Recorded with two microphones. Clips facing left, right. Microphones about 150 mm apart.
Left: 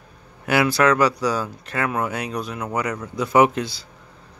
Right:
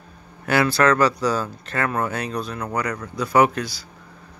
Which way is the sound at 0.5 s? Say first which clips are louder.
Even; 15° left (ahead or behind).